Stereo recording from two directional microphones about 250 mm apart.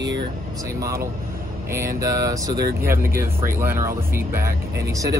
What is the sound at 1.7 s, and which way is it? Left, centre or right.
Speech, centre.